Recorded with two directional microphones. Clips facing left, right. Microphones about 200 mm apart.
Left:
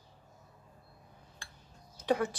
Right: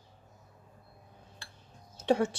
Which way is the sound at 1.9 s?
25° right (ahead or behind).